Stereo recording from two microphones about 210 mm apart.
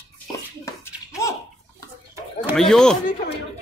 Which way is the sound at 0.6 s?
15° left (ahead or behind).